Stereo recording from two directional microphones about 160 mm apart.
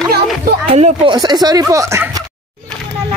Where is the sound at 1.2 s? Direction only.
25° right (ahead or behind).